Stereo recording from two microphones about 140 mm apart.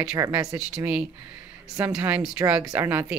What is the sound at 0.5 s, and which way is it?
Speech, 10° right (ahead or behind).